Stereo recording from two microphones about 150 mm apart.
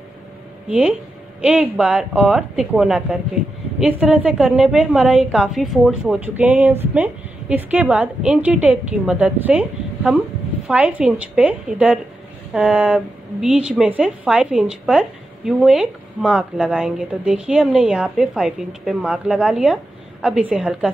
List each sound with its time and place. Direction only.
0.7 s a woman's voice: 5° right (ahead or behind)